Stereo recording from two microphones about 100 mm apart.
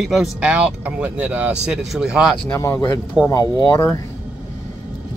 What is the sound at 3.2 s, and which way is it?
Speech, 10° right (ahead or behind).